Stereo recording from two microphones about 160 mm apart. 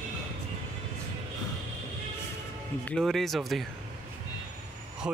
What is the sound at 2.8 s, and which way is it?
Speech, 5° left (ahead or behind).